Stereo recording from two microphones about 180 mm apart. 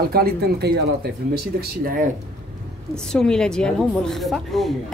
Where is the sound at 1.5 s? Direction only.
50° right (ahead or behind).